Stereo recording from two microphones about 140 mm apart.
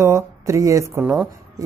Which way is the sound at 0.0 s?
20° right (ahead or behind).